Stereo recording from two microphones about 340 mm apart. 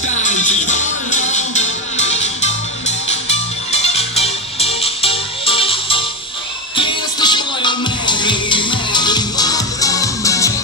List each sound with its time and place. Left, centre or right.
0.2 s music: left